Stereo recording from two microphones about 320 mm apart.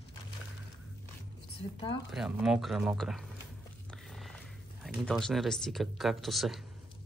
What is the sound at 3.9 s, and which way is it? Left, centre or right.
Music, centre.